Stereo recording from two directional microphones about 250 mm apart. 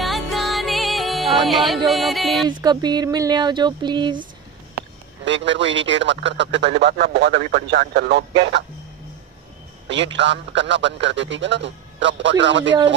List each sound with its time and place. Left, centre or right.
0.0 s music: centre
2.6 s speech: centre
5.2 s a man's voice: right
9.8 s a man's voice: right